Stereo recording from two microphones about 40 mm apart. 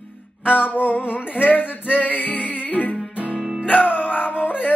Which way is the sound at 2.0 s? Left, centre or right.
Left.